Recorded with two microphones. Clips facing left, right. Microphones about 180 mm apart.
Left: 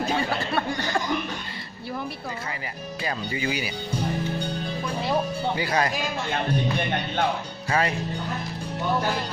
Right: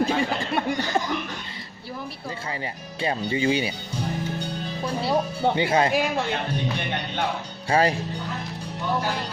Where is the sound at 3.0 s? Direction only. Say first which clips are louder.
Right 5 dB; 30° right (ahead or behind).